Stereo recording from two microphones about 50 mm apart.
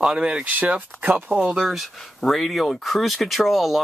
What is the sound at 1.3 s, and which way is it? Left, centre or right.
Speech, centre.